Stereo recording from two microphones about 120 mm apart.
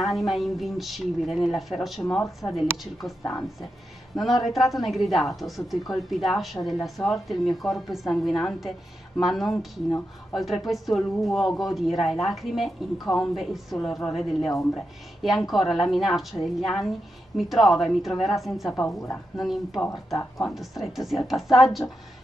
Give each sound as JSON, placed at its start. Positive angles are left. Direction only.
{"t": 0.0, "sound": "a woman's voice", "side_deg": 0}
{"t": 18.7, "sound": "a woman's voice", "side_deg": 25}
{"t": 19.4, "sound": "a woman's voice", "side_deg": 0}